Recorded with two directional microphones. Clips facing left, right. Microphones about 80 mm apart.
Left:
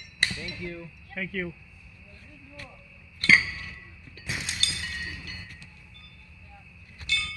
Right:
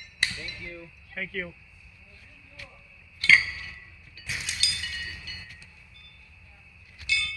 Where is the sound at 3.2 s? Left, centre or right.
Left.